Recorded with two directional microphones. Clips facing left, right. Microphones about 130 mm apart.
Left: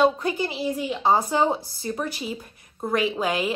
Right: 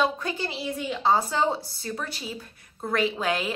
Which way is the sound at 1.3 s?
20° left (ahead or behind).